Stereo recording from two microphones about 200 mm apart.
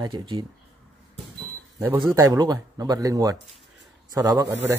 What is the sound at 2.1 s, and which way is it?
A man's voice, 15° right (ahead or behind).